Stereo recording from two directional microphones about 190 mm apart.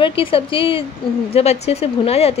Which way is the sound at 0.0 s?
30° left (ahead or behind).